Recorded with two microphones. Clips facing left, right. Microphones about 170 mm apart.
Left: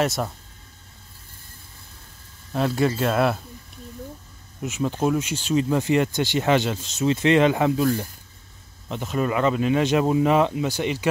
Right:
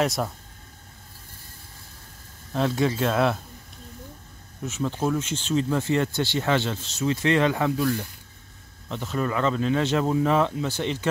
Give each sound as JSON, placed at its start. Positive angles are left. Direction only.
{"t": 0.0, "sound": "speech", "side_deg": 0}
{"t": 2.5, "sound": "speech", "side_deg": 5}
{"t": 4.6, "sound": "speech", "side_deg": 15}